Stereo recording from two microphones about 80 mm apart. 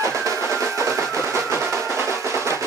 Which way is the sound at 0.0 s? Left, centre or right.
Right.